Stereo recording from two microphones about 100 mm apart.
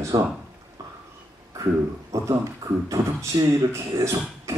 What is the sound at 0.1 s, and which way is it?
Speech, 40° right (ahead or behind).